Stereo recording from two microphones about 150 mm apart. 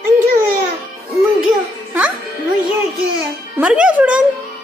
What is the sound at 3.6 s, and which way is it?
Speech, 10° right (ahead or behind).